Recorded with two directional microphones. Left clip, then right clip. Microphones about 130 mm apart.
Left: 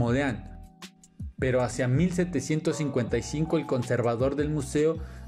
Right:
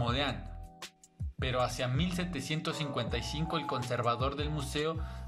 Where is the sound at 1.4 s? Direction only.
65° left (ahead or behind).